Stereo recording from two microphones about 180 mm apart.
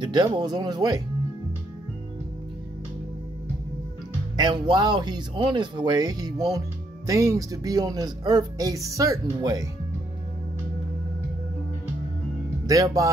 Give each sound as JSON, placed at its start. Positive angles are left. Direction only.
{"t": 0.0, "sound": "speech", "side_deg": -25}
{"t": 4.4, "sound": "speech", "side_deg": -25}
{"t": 12.6, "sound": "speech", "side_deg": -20}